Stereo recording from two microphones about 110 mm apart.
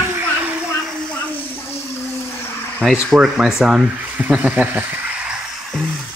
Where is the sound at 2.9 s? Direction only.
5° right (ahead or behind).